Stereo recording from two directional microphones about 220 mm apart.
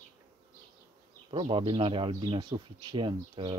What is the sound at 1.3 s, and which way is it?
Speech, 25° right (ahead or behind).